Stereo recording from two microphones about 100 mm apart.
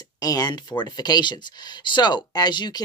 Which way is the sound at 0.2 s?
40° left (ahead or behind).